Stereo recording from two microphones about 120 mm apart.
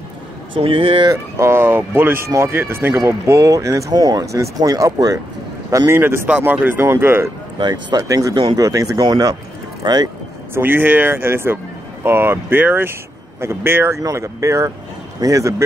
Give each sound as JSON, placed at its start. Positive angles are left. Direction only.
{"t": 0.6, "sound": "speech", "side_deg": -50}
{"t": 1.0, "sound": "speech", "side_deg": -25}
{"t": 7.5, "sound": "speech", "side_deg": -35}
{"t": 10.5, "sound": "speech", "side_deg": -15}